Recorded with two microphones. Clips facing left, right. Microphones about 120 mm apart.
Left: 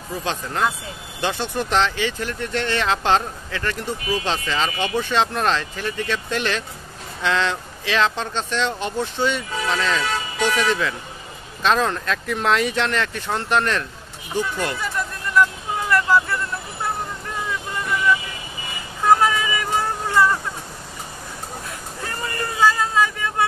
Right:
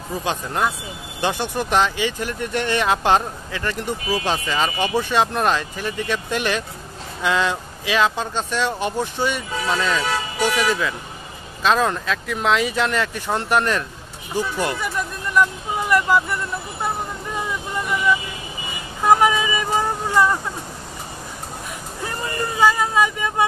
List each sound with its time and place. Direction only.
0.2 s speech: 10° right (ahead or behind)
19.0 s speech: 15° right (ahead or behind)
22.6 s speech: 15° right (ahead or behind)